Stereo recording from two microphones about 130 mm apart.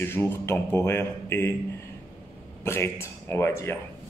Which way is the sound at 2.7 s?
20° left (ahead or behind).